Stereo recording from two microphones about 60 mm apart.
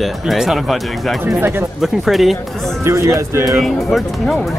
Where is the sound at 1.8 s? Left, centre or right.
Centre.